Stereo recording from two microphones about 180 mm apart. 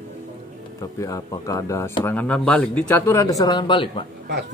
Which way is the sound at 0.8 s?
20° left (ahead or behind).